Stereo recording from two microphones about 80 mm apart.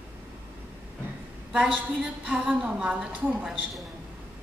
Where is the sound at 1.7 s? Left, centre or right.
Centre.